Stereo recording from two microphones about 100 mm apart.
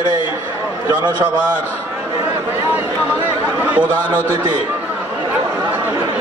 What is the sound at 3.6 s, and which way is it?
Speech, 15° right (ahead or behind).